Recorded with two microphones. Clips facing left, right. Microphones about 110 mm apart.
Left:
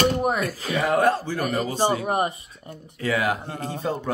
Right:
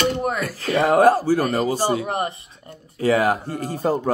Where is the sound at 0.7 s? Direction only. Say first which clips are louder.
Right 6 dB; 40° right (ahead or behind).